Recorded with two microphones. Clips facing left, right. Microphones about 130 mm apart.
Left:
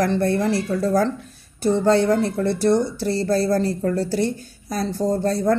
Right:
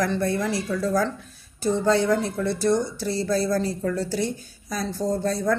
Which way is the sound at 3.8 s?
50° left (ahead or behind).